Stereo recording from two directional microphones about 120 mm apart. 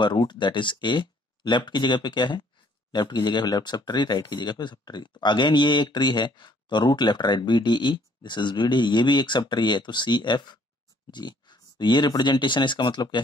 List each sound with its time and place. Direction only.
0.0 s speech: 40° left (ahead or behind)